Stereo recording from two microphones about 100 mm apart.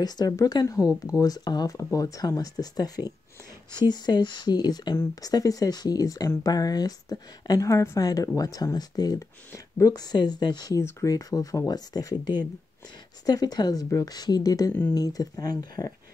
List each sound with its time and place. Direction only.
0.0 s speech: 40° left (ahead or behind)